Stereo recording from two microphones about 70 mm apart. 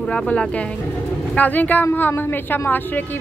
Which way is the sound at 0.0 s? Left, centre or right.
Centre.